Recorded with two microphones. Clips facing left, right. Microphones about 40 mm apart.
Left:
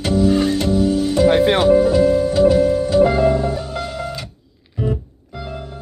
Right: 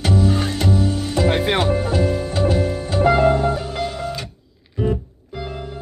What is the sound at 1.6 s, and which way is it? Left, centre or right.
Music, right.